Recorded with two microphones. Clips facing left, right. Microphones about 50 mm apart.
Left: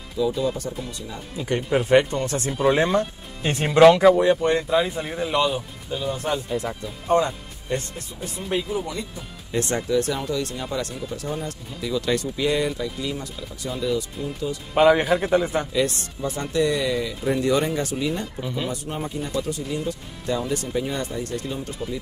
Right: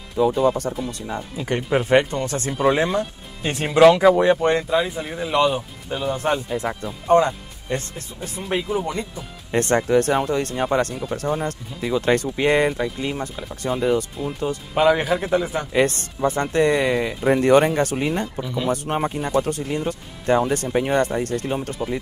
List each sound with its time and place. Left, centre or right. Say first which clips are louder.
0.2 s speech: right 5 dB; right
1.7 s speech: even; centre
2.2 s speech: right 1 dB; right
2.5 s a man's voice: even; centre
4.2 s speech: right 2 dB; right
4.6 s a man's voice: even; centre
5.3 s speech: right 5 dB; centre
9.5 s speech: right 5 dB; right
14.7 s a man's voice: left 1 dB; centre
15.7 s speech: right 4 dB; right